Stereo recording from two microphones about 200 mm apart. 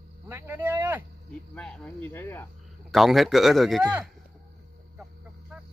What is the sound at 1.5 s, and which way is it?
Speech, 5° left (ahead or behind).